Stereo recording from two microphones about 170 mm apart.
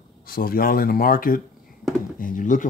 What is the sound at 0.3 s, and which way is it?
Speech, 60° left (ahead or behind).